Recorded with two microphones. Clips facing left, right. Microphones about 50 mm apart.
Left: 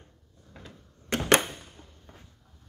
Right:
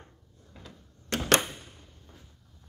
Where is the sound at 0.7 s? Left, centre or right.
Centre.